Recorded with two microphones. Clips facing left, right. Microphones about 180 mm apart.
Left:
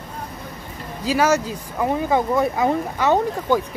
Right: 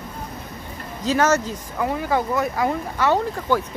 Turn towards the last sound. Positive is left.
turn(degrees=15)  # may be behind; listen again after turning